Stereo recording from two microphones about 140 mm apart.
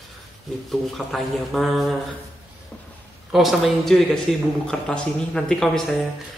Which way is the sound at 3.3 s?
Centre (ahead or behind).